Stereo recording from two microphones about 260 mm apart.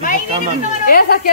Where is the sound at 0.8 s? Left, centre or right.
Left.